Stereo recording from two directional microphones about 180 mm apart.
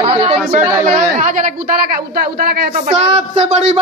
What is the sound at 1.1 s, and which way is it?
Speech, 45° right (ahead or behind).